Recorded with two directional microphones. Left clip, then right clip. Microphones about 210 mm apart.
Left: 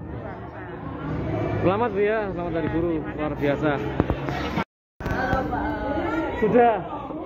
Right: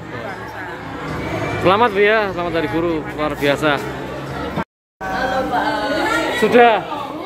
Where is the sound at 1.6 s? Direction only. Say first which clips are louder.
Right 9 dB; 20° right (ahead or behind).